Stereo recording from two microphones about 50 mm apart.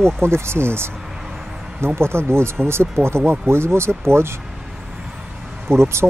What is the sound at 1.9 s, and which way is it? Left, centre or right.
Speech, right.